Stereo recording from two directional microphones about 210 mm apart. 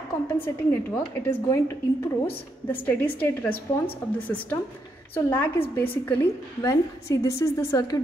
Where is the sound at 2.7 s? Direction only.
10° left (ahead or behind).